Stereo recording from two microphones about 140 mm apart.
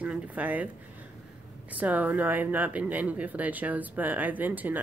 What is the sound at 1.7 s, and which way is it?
Speech, 10° right (ahead or behind).